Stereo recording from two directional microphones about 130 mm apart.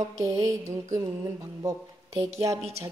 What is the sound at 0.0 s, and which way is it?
Speech, 25° right (ahead or behind).